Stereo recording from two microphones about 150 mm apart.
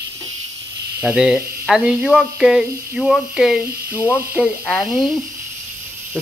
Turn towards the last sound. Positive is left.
turn(degrees=0)  # may be behind; listen again after turning